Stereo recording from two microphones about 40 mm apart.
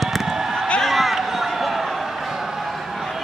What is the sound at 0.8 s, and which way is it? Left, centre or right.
Run, centre.